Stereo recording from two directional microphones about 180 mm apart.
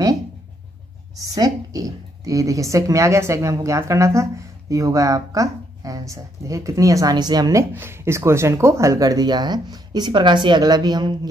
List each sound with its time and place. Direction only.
1.2 s speech: 20° right (ahead or behind)